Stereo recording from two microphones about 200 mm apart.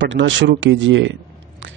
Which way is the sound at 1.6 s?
70° right (ahead or behind).